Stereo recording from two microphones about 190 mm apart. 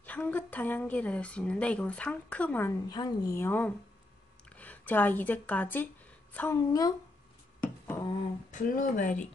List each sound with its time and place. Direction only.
0.0 s a woman's voice: 10° left (ahead or behind)
7.6 s a sound: 10° left (ahead or behind)
8.5 s speech: 45° left (ahead or behind)